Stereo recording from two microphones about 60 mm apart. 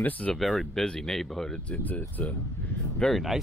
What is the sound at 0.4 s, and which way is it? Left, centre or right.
Speech, centre.